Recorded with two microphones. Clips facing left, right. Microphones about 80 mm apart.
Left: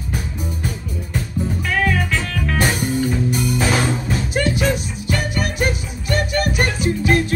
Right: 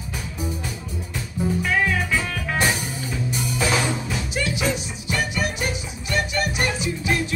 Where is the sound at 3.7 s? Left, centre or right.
Left.